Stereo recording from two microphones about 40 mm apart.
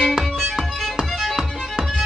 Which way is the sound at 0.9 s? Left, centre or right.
Centre.